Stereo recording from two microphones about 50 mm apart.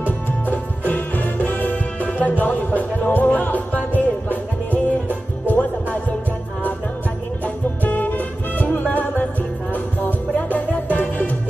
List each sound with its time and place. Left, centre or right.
0.0 s music: left
7.4 s music: left